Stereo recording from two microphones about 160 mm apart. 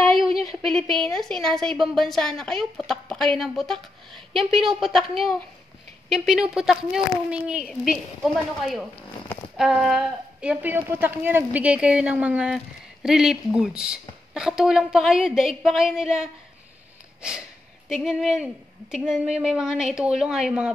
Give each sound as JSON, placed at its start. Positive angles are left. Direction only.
{"t": 0.3, "sound": "a sound", "side_deg": -35}
{"t": 0.7, "sound": "speech", "side_deg": 0}
{"t": 6.0, "sound": "a woman's voice", "side_deg": 0}